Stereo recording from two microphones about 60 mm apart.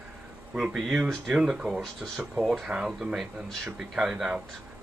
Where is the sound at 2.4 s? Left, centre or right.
Centre.